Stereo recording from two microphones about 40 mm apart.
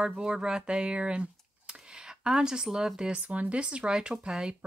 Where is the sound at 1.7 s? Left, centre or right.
Centre.